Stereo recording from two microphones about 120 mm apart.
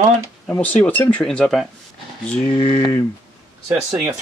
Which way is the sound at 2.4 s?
45° left (ahead or behind).